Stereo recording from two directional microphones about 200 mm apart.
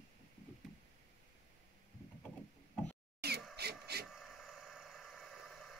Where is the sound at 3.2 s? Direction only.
55° right (ahead or behind).